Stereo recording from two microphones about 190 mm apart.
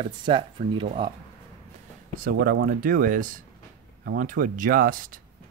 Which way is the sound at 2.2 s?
50° right (ahead or behind).